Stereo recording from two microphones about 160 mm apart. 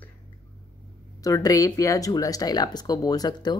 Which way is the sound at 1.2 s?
20° left (ahead or behind).